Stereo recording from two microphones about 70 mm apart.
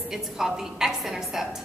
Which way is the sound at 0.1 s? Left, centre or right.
Centre.